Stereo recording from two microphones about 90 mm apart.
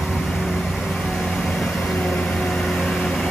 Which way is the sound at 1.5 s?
Centre (ahead or behind).